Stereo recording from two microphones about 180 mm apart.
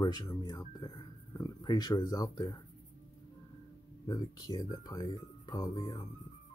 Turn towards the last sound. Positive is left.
turn(degrees=20)  # may be behind; listen again after turning